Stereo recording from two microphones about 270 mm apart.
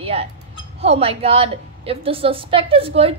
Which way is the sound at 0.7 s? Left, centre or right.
Right.